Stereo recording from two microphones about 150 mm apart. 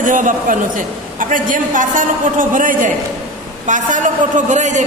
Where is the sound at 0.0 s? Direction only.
60° right (ahead or behind).